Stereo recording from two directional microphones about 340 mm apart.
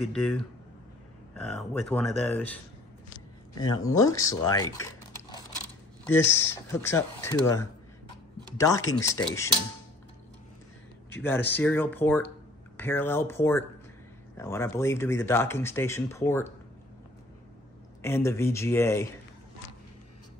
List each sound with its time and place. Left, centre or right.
1.3 s speech: centre
11.1 s speech: centre
18.0 s speech: centre